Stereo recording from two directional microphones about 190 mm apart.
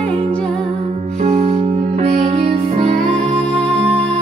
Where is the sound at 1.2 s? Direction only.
35° right (ahead or behind).